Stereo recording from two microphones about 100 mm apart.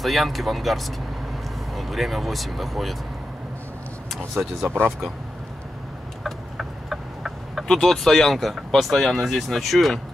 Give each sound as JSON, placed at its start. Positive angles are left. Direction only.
{"t": 0.0, "sound": "speech", "side_deg": 0}
{"t": 4.6, "sound": "speech", "side_deg": -15}
{"t": 6.2, "sound": "a sound", "side_deg": 0}